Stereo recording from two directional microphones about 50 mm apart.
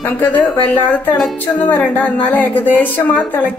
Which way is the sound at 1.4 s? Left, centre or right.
Left.